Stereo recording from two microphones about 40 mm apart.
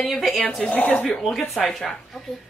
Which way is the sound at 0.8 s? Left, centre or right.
Centre.